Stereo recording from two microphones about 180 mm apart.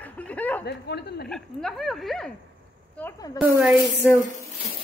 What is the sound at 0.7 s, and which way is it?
Speech, 65° left (ahead or behind).